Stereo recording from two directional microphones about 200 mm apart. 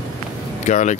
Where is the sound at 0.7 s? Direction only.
35° left (ahead or behind).